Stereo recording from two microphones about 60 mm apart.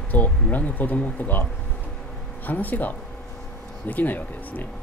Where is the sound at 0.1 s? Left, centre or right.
Left.